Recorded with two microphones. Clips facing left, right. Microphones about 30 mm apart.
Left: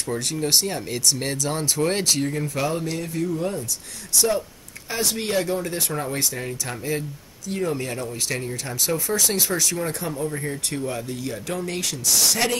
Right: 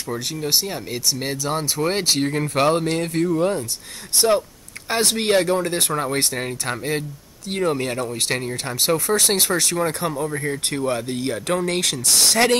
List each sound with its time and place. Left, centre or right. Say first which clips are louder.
0.1 s speech: even; centre
2.2 s speech: right 6 dB; right
4.1 s speech: right 4 dB; right
7.7 s speech: right 4 dB; right
9.6 s speech: right 4 dB; right
10.7 s speech: right 6 dB; right
11.1 s speech: right 6 dB; right